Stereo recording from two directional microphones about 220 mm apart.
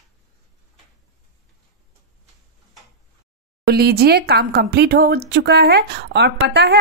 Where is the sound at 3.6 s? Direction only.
45° right (ahead or behind).